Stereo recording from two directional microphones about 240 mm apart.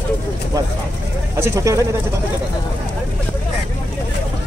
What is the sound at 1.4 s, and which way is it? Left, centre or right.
Speech, centre.